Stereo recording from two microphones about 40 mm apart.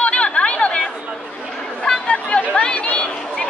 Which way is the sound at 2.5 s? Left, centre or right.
Left.